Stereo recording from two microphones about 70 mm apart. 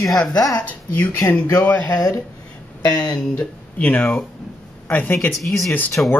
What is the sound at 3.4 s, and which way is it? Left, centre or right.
Speech, left.